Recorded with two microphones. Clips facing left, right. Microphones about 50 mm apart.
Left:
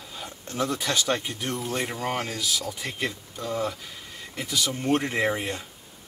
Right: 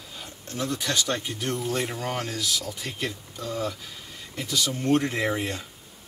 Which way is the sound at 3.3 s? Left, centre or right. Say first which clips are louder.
Left 2 dB; centre.